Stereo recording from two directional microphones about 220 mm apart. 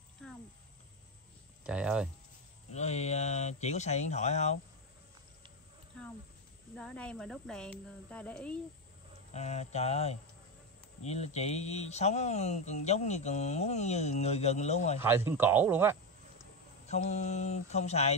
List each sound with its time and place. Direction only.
1.6 s speech: 5° right (ahead or behind)
2.7 s speech: 30° left (ahead or behind)
6.7 s speech: 5° left (ahead or behind)
9.3 s mantra: 30° left (ahead or behind)
11.0 s speech: 30° left (ahead or behind)
15.0 s speech: 10° right (ahead or behind)
16.8 s speech: 30° left (ahead or behind)